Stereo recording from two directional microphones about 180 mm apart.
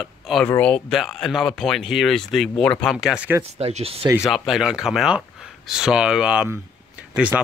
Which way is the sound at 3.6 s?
35° right (ahead or behind).